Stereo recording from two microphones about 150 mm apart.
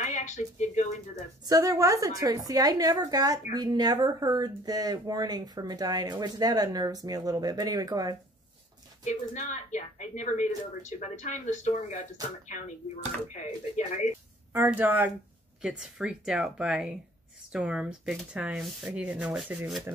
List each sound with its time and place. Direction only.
0.0 s speech: 55° left (ahead or behind)
1.4 s speech: 25° right (ahead or behind)
9.0 s a woman's voice: 50° left (ahead or behind)
14.5 s speech: 15° right (ahead or behind)